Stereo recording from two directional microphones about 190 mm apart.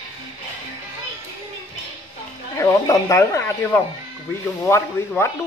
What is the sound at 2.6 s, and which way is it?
Speech, 15° left (ahead or behind).